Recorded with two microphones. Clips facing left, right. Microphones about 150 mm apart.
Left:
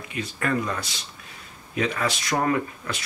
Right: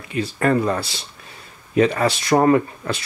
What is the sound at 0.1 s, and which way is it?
Speech, 35° right (ahead or behind).